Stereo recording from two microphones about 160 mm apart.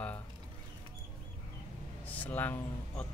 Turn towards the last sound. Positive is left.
turn(degrees=10)  # may be behind; listen again after turning